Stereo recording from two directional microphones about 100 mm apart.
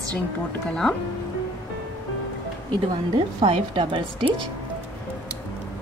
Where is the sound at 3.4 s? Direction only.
80° right.